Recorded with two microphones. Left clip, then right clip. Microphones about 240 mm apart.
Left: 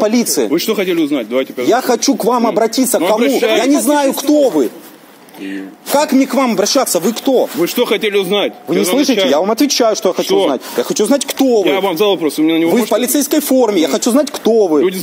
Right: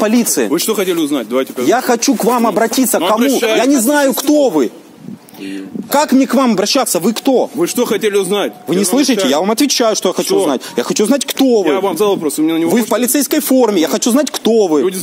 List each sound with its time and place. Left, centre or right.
0.0 s speech: right
0.5 s speech: right
1.7 s speech: right
3.0 s speech: right
3.5 s speech: right
5.9 s speech: right
7.6 s speech: right
8.6 s speech: right
11.6 s speech: centre
12.7 s speech: right